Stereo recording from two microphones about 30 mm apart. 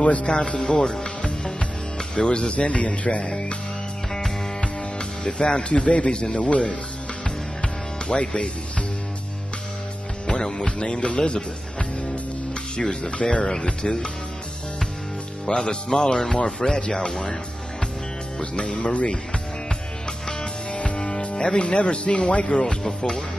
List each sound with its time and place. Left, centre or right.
0.0 s speech: left
0.3 s speech: left
0.7 s speech: left
2.1 s speech: left
4.6 s speech: left
8.2 s speech: left
10.2 s music: left
10.8 s speech: left
13.0 s speech: left
15.4 s speech: left
18.4 s speech: left
20.7 s music: left
21.5 s speech: left